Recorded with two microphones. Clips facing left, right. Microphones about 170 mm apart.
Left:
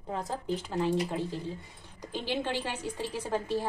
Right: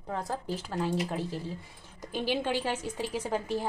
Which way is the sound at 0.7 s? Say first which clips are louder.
Left 1 dB; 5° right (ahead or behind).